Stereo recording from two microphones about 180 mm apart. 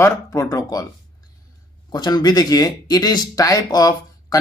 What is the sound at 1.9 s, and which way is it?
Speech, 25° left (ahead or behind).